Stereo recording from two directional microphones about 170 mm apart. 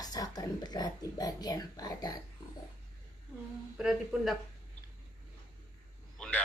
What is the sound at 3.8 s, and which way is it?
Speech, centre (ahead or behind).